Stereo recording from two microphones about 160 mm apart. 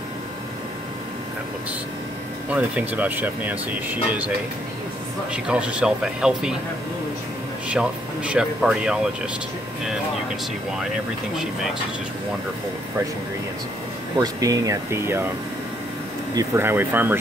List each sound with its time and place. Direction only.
2.5 s speech: 10° right (ahead or behind)
5.3 s speech: 5° right (ahead or behind)
7.6 s speech: 5° right (ahead or behind)
14.1 s speech: 20° right (ahead or behind)
16.3 s speech: 15° right (ahead or behind)